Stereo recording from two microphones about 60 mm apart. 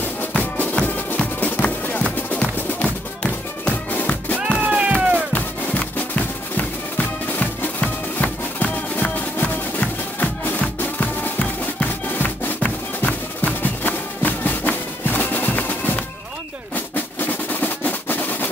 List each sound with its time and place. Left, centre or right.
0.2 s music: left
4.6 s music: right
5.3 s music: left
16.7 s drum roll: left